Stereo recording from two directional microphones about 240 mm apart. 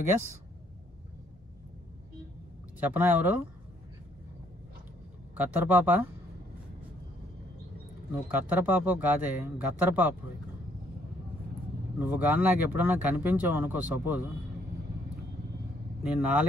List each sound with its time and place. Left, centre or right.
2.8 s speech: centre
5.3 s speech: centre
8.3 s speech: centre
12.0 s speech: centre
16.0 s speech: centre